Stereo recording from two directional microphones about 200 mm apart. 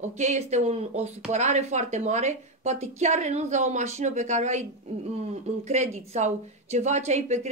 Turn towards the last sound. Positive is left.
turn(degrees=-35)  # may be behind; listen again after turning